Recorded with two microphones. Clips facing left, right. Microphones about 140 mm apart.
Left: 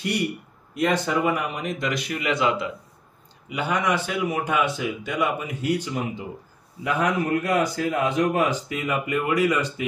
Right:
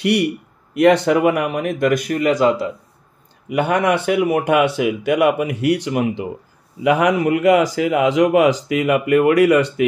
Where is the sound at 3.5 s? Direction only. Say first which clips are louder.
Right 7 dB; 60° right (ahead or behind).